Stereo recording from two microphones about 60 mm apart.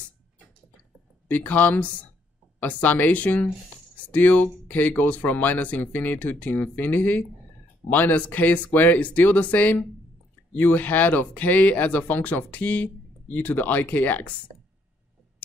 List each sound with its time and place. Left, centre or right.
1.3 s speech: left